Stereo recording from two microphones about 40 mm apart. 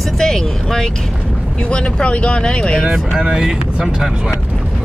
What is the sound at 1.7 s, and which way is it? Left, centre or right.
Speech, left.